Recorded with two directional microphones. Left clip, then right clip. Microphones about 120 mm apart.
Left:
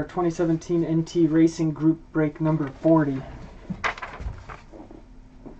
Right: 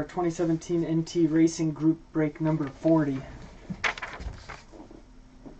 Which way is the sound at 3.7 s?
40° right (ahead or behind).